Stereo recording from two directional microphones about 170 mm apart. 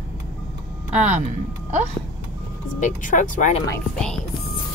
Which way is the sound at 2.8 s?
50° left (ahead or behind).